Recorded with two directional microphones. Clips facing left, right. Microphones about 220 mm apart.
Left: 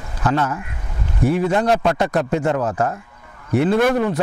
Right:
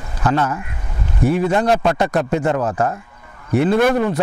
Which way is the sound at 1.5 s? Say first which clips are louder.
Right 1 dB; 25° right (ahead or behind).